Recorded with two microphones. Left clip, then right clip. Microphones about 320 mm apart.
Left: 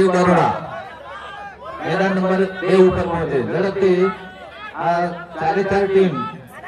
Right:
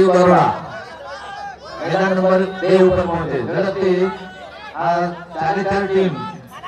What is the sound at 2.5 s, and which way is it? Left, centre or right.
A man's voice, right.